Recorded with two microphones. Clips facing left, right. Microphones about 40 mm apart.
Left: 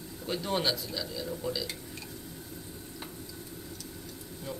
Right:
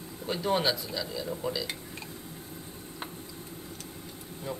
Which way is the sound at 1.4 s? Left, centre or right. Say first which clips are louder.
Right 1 dB; right.